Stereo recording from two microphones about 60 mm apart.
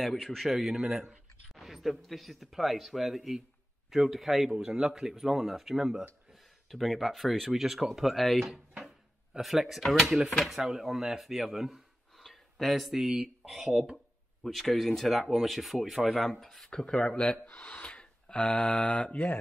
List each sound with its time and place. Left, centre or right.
0.0 s speech: centre
1.5 s speech: centre; by 19.4 s left